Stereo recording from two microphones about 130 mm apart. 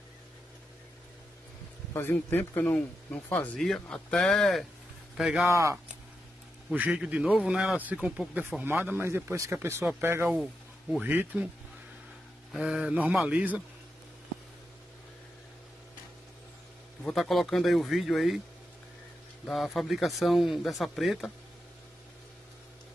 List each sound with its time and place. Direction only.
2.0 s speech: 15° left (ahead or behind)
3.5 s speech: centre (ahead or behind)
5.5 s speech: 20° right (ahead or behind)
6.7 s speech: 10° right (ahead or behind)
9.8 s speech: 10° right (ahead or behind)
12.5 s speech: 5° right (ahead or behind)
17.0 s speech: centre (ahead or behind)
19.4 s speech: centre (ahead or behind)